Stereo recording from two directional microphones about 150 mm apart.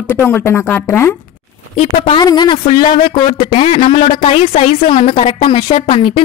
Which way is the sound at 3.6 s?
45° left (ahead or behind).